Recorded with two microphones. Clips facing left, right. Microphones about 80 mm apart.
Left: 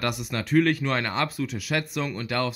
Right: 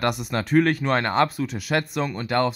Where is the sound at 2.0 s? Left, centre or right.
Right.